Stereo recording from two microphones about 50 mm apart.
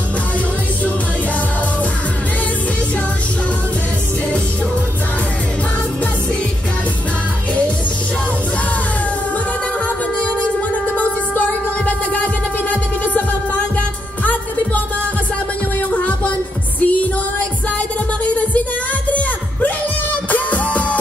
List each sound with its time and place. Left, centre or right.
11.0 s music: left
15.9 s music: left
18.2 s music: left
20.2 s music: left